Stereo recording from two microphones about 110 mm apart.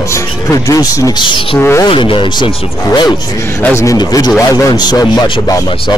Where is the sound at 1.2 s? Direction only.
50° left (ahead or behind).